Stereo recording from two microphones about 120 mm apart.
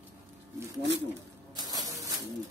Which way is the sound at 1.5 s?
30° right (ahead or behind).